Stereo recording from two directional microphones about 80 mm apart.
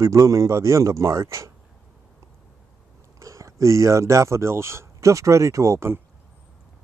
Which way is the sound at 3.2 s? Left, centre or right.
Right.